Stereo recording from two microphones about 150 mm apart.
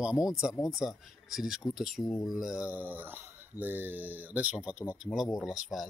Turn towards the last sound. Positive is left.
turn(degrees=0)  # may be behind; listen again after turning